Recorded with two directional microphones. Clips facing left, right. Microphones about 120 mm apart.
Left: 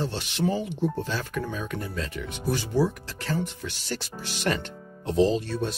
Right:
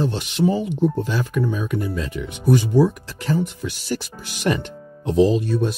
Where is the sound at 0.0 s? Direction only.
15° right (ahead or behind).